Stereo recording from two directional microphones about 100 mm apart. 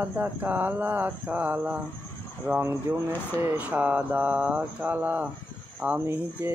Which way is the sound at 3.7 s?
15° right (ahead or behind).